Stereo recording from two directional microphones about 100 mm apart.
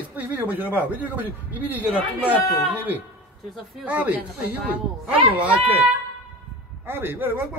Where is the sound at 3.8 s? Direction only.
15° right (ahead or behind).